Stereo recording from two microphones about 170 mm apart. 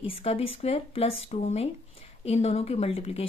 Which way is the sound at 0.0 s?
35° left (ahead or behind).